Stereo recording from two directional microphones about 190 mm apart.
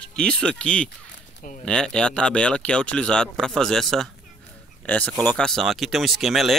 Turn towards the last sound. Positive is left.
turn(degrees=0)  # may be behind; listen again after turning